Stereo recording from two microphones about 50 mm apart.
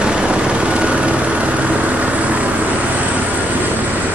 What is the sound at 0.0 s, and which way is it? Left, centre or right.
Vehicle, right.